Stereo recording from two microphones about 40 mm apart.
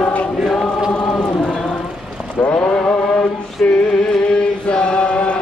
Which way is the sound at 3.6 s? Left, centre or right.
Left.